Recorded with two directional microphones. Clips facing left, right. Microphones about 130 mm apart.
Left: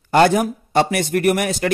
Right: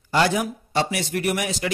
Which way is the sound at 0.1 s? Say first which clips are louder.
Left 7 dB; 50° left (ahead or behind).